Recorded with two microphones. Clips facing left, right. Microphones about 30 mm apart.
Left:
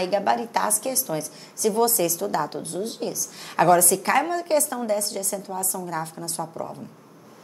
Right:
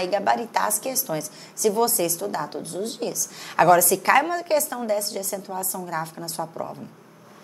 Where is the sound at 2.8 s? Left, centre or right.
Centre.